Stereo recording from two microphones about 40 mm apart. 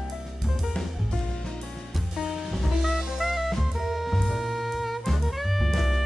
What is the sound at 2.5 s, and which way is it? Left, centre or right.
Music, centre.